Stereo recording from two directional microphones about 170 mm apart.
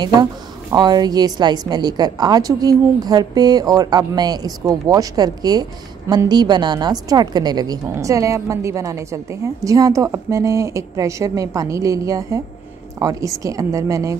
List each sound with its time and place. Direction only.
0.0 s a woman's voice: 25° right (ahead or behind)